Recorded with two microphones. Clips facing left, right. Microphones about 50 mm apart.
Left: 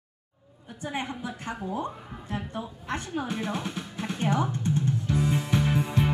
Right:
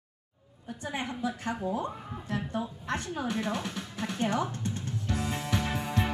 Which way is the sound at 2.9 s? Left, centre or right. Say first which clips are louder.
Left 2 dB; left.